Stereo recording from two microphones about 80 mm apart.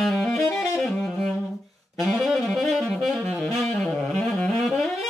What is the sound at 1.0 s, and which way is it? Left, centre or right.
Music, centre.